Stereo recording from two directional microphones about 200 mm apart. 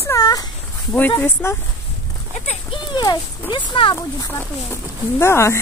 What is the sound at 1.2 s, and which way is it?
Speech, 10° left (ahead or behind).